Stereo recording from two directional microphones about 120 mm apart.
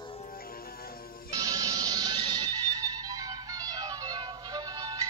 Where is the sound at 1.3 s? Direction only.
30° right (ahead or behind).